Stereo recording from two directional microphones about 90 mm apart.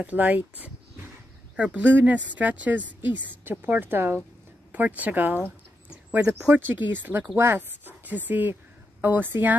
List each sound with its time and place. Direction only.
0.0 s a woman's voice: 15° right (ahead or behind)
6.2 s speech: 35° right (ahead or behind)
6.5 s a woman's voice: 20° right (ahead or behind)